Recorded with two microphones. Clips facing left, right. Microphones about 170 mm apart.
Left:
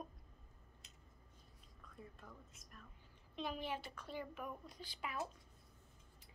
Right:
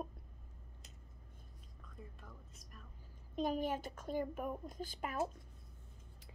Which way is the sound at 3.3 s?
45° right (ahead or behind).